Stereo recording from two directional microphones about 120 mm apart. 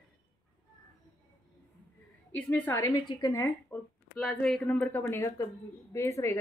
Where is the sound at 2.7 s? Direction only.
25° left (ahead or behind).